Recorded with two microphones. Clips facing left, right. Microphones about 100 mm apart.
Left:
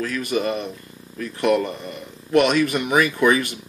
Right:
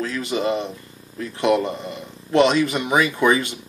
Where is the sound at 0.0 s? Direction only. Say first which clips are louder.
Even; 25° right (ahead or behind).